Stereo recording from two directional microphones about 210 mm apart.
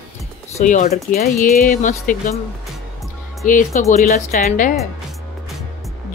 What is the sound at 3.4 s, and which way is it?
Speech, 40° left (ahead or behind).